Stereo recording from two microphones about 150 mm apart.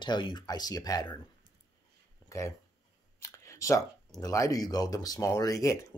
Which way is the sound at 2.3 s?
20° left (ahead or behind).